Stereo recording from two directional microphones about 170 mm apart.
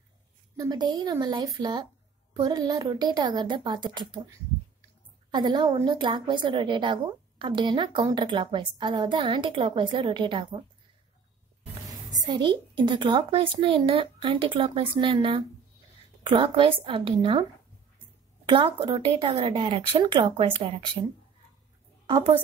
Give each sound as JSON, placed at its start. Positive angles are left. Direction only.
{"t": 0.6, "sound": "a woman's voice", "side_deg": -25}
{"t": 12.1, "sound": "a woman's voice", "side_deg": -25}
{"t": 22.0, "sound": "a sound", "side_deg": -25}